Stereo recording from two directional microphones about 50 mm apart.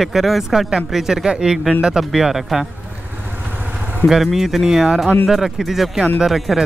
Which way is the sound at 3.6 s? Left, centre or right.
Right.